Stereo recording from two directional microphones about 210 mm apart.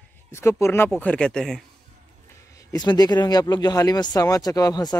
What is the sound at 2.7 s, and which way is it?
Speech, 20° left (ahead or behind).